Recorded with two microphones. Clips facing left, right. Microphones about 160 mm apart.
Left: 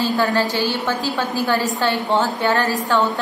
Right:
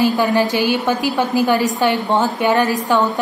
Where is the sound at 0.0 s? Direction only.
15° right (ahead or behind).